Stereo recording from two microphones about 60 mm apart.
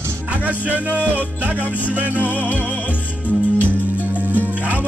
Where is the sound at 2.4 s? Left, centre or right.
Left.